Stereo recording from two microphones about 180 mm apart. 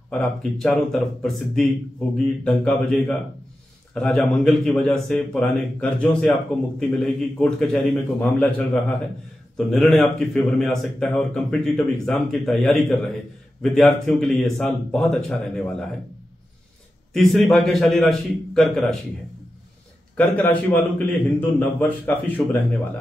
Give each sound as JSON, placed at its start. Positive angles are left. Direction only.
{"t": 0.1, "sound": "speech", "side_deg": 5}
{"t": 17.1, "sound": "speech", "side_deg": 0}
{"t": 20.2, "sound": "a man's voice", "side_deg": 10}